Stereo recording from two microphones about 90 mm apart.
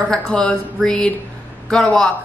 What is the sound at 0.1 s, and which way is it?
A woman's voice, 10° left (ahead or behind).